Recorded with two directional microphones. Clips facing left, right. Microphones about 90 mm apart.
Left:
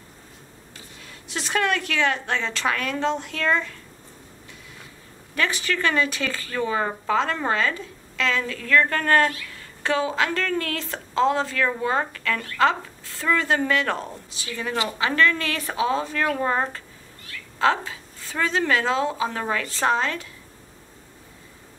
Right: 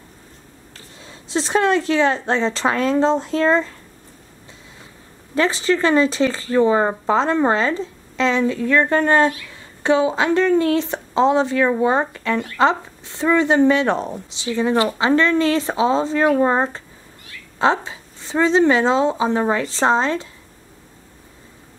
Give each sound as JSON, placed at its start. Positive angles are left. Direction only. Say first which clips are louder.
{"t": 1.0, "sound": "speech", "louder": "right 9 dB", "side_deg": -25}
{"t": 5.3, "sound": "speech", "louder": "right 7 dB", "side_deg": -25}